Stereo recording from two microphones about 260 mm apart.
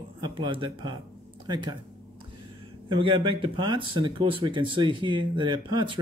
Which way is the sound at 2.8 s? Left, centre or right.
Centre.